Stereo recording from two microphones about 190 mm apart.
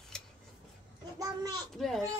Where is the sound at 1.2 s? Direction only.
20° right (ahead or behind).